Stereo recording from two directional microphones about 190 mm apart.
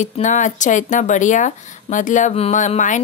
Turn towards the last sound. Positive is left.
turn(degrees=40)  # may be behind; listen again after turning